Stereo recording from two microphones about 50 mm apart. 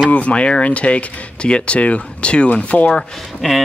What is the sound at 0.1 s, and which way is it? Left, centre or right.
Speech, left.